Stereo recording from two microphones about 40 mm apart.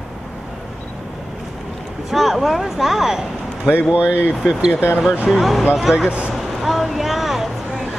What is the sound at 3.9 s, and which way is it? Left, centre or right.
Speech, right.